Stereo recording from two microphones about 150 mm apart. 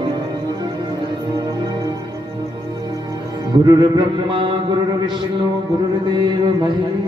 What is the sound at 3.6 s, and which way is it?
Mantra, 25° right (ahead or behind).